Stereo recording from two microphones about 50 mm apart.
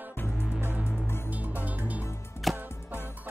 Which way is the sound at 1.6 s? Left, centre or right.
Right.